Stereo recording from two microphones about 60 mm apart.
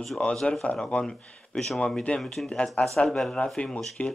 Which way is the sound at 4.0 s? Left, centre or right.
Left.